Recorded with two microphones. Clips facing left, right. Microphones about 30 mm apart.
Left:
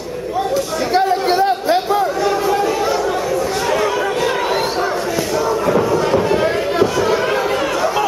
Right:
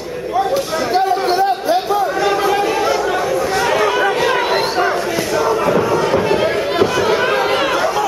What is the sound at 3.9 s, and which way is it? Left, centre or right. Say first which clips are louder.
Crowd: right 3 dB; right.